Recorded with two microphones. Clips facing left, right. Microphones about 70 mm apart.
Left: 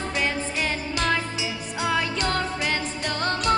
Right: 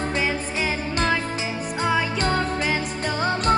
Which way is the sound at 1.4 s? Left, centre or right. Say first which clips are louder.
Right 3 dB; right.